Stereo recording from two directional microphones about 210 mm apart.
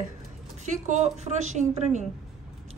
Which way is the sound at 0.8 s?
35° right (ahead or behind).